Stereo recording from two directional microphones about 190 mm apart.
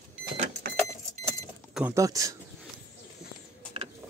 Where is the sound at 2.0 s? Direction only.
15° right (ahead or behind).